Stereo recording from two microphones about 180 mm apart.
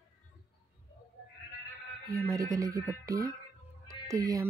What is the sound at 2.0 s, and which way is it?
Speech, 15° right (ahead or behind).